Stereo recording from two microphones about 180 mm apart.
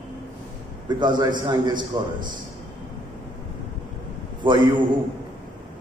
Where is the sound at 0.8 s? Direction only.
25° right (ahead or behind).